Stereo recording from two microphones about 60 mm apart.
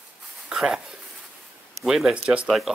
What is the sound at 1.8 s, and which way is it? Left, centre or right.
Speech, centre.